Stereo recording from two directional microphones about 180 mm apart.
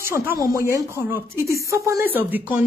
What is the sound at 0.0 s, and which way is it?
Speech, 15° right (ahead or behind).